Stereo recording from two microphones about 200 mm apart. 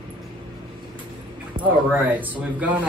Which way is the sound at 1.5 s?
25° right (ahead or behind).